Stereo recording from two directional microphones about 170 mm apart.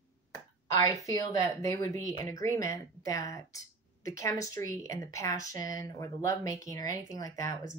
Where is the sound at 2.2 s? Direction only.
20° left (ahead or behind).